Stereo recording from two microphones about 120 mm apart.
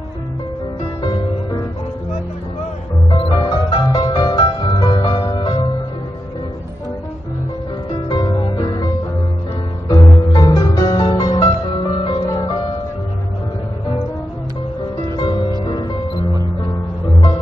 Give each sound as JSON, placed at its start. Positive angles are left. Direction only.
{"t": 1.0, "sound": "music", "side_deg": 40}
{"t": 3.1, "sound": "music", "side_deg": 40}
{"t": 8.1, "sound": "music", "side_deg": 35}
{"t": 11.7, "sound": "music", "side_deg": 45}
{"t": 15.1, "sound": "music", "side_deg": 40}